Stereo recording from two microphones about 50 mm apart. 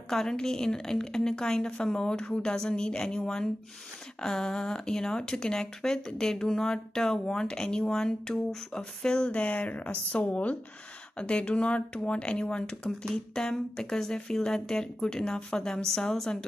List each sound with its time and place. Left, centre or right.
0.1 s speech: centre